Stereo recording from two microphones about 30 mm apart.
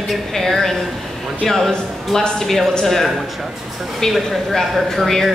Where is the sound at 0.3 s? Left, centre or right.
Centre.